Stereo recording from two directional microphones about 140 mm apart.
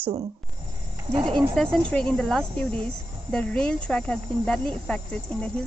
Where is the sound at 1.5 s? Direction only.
5° left (ahead or behind).